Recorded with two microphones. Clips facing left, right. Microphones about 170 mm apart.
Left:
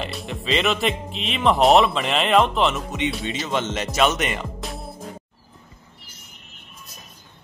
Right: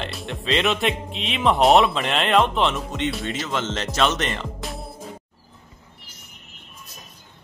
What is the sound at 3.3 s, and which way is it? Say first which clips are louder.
Speech: left 1 dB; 20° left (ahead or behind).